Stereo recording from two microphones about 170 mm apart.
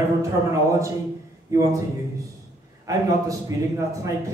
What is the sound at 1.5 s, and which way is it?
Speech, 20° right (ahead or behind).